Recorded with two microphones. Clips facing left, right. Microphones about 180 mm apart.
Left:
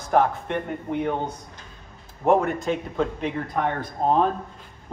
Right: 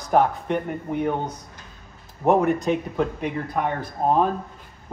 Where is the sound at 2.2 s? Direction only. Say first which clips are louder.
Right 1 dB; 15° right (ahead or behind).